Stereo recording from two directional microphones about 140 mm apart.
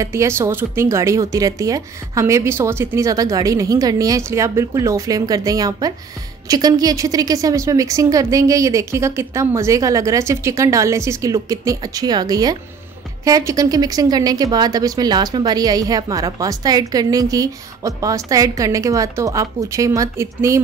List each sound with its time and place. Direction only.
0.0 s speech: 20° right (ahead or behind)